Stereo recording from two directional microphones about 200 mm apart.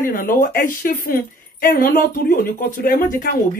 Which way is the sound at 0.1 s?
45° left (ahead or behind).